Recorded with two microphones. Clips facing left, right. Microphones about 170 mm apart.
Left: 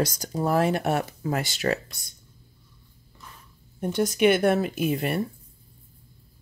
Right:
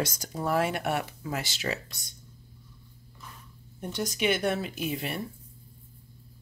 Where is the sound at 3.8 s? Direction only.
55° left (ahead or behind).